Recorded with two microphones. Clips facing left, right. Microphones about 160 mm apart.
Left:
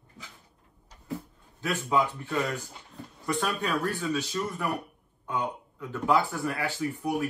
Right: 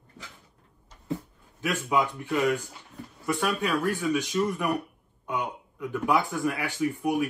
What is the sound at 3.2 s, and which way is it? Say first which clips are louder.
Speech: right 2 dB; 10° right (ahead or behind).